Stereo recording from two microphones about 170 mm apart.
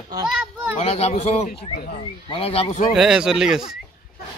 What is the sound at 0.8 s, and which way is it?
A man's voice, 35° left (ahead or behind).